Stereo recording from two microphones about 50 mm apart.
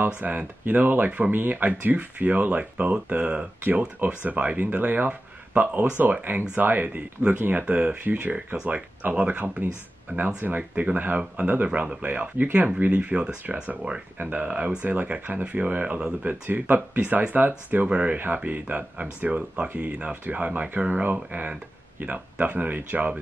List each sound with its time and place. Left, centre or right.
0.0 s speech: right
7.2 s speech: right
10.1 s speech: right
14.1 s speech: right
16.3 s speech: right
17.8 s speech: right
18.1 s speech: right